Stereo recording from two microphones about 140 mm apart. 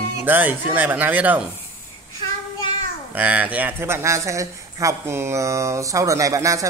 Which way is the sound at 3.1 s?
10° right (ahead or behind).